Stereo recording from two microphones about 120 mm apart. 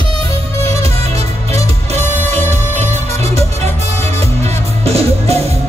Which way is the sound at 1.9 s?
65° right (ahead or behind).